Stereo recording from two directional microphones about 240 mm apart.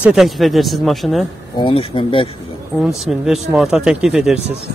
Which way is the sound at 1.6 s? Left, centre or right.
Left.